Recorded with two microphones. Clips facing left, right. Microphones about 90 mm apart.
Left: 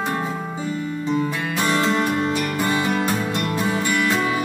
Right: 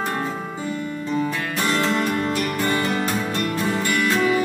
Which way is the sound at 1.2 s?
15° left (ahead or behind).